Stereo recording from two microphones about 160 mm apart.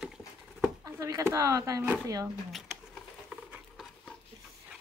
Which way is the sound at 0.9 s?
20° right (ahead or behind).